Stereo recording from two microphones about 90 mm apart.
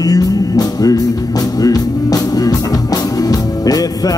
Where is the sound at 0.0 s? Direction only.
45° left (ahead or behind).